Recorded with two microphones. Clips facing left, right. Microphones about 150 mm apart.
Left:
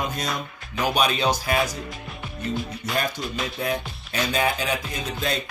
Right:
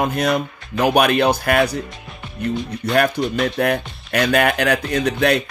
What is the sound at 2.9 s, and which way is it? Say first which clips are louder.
Speech: right 10 dB; 65° right (ahead or behind).